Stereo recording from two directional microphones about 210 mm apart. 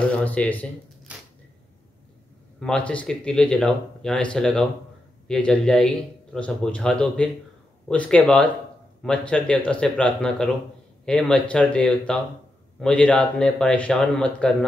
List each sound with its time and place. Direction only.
0.1 s speech: 5° left (ahead or behind)
1.1 s a sound: 5° right (ahead or behind)
2.6 s speech: 5° left (ahead or behind)